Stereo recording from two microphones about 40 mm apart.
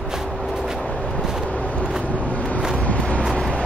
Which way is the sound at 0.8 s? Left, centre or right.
Left.